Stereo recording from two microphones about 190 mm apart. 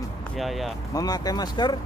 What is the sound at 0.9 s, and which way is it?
Speech, 20° left (ahead or behind).